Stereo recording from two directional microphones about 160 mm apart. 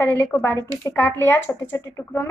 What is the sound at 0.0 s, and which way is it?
Speech, 15° left (ahead or behind).